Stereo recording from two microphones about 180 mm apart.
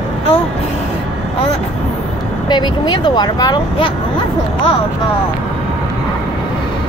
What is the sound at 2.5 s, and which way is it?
Speech, 25° left (ahead or behind).